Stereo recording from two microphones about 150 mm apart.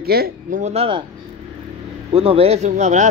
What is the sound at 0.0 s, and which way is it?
Speech, 90° right.